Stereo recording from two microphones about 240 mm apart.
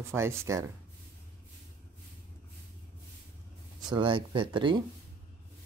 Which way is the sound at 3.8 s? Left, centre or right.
Centre.